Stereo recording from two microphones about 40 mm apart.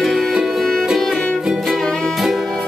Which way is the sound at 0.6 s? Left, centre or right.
Centre.